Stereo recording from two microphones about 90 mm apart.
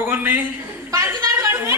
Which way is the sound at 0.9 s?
35° right (ahead or behind).